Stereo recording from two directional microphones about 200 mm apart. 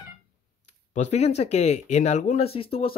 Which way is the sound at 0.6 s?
35° left (ahead or behind).